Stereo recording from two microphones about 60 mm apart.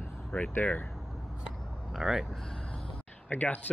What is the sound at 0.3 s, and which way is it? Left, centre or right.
Speech, left.